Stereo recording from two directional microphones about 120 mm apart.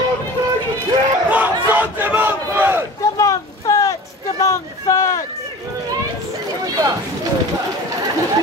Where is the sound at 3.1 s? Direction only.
30° left (ahead or behind).